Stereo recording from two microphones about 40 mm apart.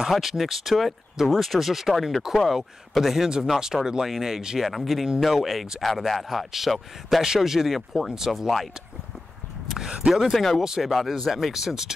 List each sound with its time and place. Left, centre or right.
0.1 s speech: centre
9.8 s speech: centre
10.1 s speech: centre